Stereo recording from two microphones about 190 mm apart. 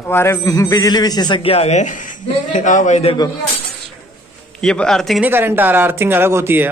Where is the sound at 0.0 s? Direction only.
15° left (ahead or behind); by 3.2 s 35° left (ahead or behind).